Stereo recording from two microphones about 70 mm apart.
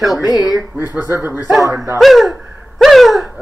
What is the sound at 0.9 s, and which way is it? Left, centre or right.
Speech, right.